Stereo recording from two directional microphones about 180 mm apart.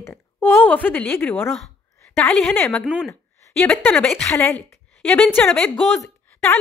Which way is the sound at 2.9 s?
5° right (ahead or behind).